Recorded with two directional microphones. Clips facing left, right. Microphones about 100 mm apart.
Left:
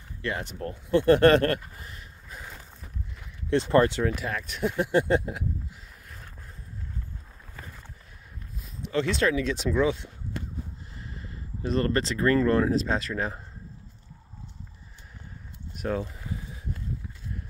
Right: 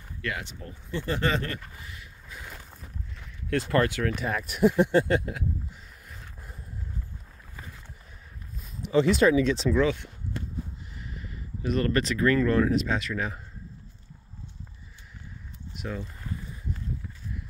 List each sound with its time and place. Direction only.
0.4 s speech: 50° left (ahead or behind)
1.8 s a sound: 40° left (ahead or behind)
3.4 s speech: 25° left (ahead or behind)
4.0 s speech: 5° left (ahead or behind)
4.3 s speech: 5° right (ahead or behind)
4.9 s speech: 20° left (ahead or behind)
8.5 s speech: 5° right (ahead or behind)
11.0 s speech: 30° left (ahead or behind)
15.7 s a sound: 45° left (ahead or behind)